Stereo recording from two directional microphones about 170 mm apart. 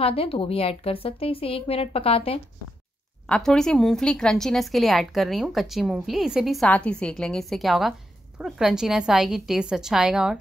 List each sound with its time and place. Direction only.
0.0 s a woman's voice: 35° left (ahead or behind)
3.3 s a woman's voice: 5° left (ahead or behind)